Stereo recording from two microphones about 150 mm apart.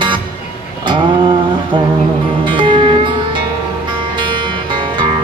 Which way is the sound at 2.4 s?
35° right (ahead or behind).